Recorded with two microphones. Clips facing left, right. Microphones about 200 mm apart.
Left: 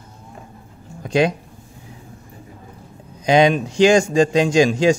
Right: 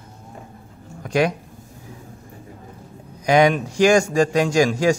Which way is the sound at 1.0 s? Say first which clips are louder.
Left 2 dB; 25° left (ahead or behind).